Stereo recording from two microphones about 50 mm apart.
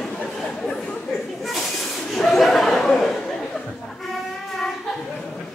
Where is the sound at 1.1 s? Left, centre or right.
Centre.